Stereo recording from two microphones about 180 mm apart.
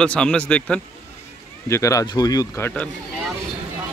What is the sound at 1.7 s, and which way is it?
Speech, 15° left (ahead or behind).